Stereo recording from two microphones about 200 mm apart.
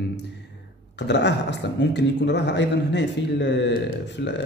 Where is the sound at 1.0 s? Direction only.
60° left (ahead or behind).